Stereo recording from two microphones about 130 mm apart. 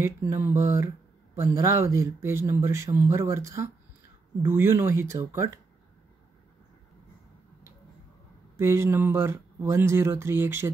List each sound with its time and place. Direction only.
0.0 s speech: 15° right (ahead or behind)
8.5 s speech: 20° right (ahead or behind)